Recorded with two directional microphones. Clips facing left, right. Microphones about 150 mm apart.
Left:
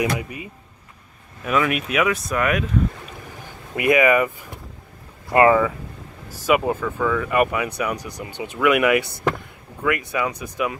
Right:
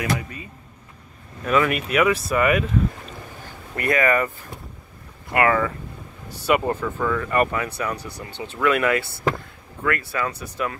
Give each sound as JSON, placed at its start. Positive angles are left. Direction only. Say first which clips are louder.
{"t": 0.0, "sound": "speech", "louder": "left 3 dB", "side_deg": 15}
{"t": 1.4, "sound": "speech", "louder": "right 1 dB", "side_deg": 0}
{"t": 3.7, "sound": "speech", "louder": "left 4 dB", "side_deg": 15}
{"t": 5.3, "sound": "speech", "louder": "left 5 dB", "side_deg": 25}
{"t": 6.4, "sound": "speech", "louder": "left 1 dB", "side_deg": 5}